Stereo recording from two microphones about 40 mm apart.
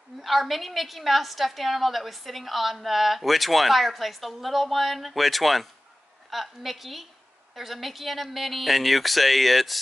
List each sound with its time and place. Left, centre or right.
0.2 s a woman's voice: centre